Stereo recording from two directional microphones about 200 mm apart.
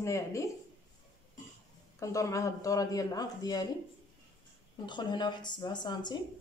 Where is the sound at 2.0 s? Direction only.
15° left (ahead or behind).